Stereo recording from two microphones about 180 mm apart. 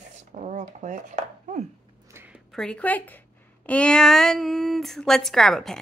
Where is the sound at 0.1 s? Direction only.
40° right (ahead or behind).